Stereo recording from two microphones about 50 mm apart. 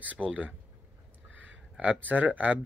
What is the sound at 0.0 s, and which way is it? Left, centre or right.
Speech, right.